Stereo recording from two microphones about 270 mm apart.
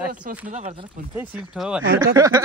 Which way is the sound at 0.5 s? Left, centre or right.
Right.